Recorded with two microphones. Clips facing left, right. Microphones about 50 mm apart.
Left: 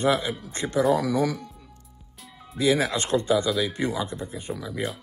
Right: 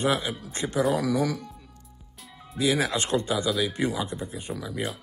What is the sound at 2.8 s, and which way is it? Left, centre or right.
Speech, right.